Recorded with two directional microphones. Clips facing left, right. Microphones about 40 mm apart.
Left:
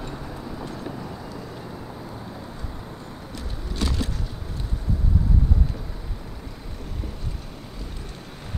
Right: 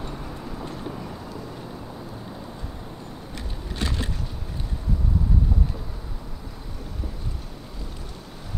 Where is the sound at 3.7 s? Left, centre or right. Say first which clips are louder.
Left 2 dB; right.